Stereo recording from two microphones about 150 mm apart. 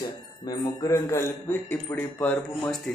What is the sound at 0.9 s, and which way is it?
A man's voice, 15° left (ahead or behind).